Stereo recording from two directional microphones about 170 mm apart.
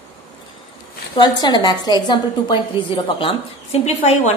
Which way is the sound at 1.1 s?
25° left (ahead or behind).